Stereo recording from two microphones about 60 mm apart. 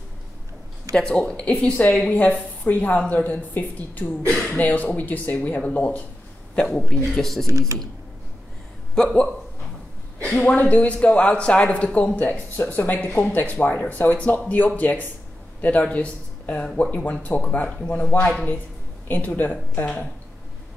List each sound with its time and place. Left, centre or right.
0.9 s speech: centre
4.3 s speech: centre
4.6 s speech: left
6.5 s speech: centre
7.4 s speech: right
8.9 s speech: centre